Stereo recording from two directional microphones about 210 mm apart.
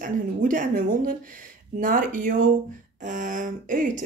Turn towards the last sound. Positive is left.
turn(degrees=-35)  # may be behind; listen again after turning